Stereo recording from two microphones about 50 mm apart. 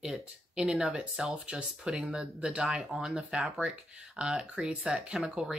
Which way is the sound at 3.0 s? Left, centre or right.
Centre.